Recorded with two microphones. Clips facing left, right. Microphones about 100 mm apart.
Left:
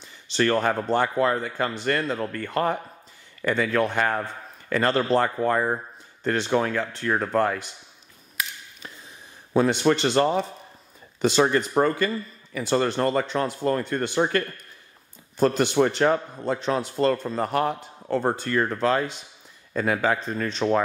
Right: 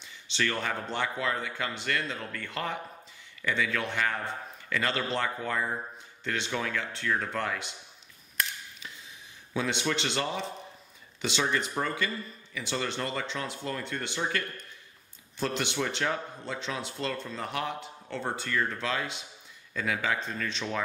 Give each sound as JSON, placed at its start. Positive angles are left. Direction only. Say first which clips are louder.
{"t": 0.0, "sound": "speech", "louder": "left 8 dB", "side_deg": 40}
{"t": 8.4, "sound": "a sound", "louder": "left 1 dB", "side_deg": 5}
{"t": 9.5, "sound": "speech", "louder": "left 10 dB", "side_deg": 45}